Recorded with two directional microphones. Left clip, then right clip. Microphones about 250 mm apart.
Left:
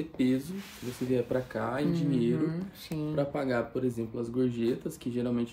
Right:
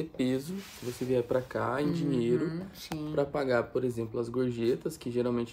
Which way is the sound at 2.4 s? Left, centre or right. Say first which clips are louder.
Left 1 dB; centre.